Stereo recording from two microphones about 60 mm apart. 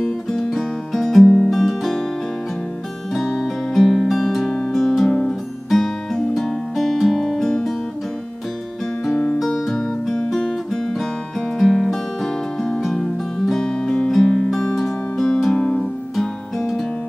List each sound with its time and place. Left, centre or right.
0.0 s music: centre
3.2 s music: centre
9.1 s music: centre
9.5 s music: centre